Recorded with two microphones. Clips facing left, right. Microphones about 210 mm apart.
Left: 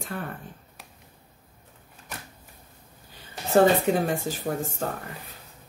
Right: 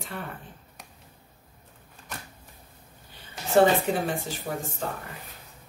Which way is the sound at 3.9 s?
45° left (ahead or behind).